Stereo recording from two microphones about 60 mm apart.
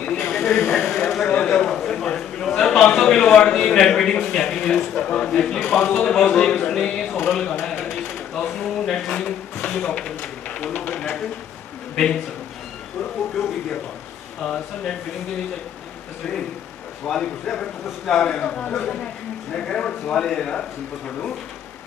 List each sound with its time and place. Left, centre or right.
0.0 s a sound: centre
3.7 s a man's voice: centre
7.8 s a sound: centre
9.7 s a man's voice: centre
14.4 s a man's voice: centre
17.0 s a man's voice: centre